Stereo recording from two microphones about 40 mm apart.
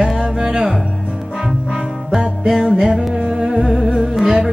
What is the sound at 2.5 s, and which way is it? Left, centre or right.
Music, centre.